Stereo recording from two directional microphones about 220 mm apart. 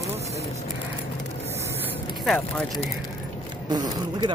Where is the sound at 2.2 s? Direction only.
Centre (ahead or behind).